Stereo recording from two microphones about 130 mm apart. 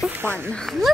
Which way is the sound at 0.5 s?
5° left (ahead or behind).